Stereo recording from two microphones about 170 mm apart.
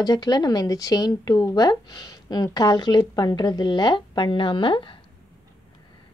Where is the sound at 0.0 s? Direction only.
25° left (ahead or behind).